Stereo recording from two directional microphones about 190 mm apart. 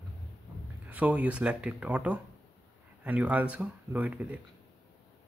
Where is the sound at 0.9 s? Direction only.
10° right (ahead or behind).